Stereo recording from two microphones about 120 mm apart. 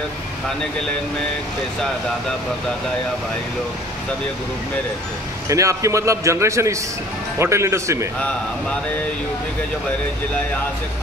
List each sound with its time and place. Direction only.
5.5 s a man's voice: 25° right (ahead or behind)